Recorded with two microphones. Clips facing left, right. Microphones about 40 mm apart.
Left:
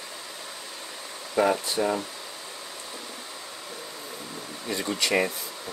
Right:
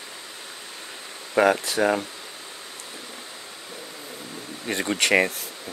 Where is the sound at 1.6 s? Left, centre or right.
Right.